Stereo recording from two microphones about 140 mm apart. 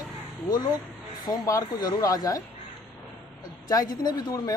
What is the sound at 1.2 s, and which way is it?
Speech, 25° left (ahead or behind).